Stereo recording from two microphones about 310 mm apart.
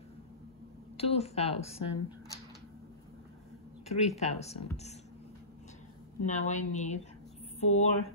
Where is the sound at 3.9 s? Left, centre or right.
Left.